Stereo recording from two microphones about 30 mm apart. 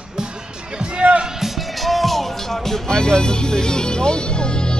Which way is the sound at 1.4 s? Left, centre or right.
Centre.